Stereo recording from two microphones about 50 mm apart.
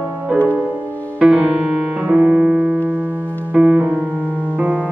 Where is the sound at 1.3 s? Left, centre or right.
Right.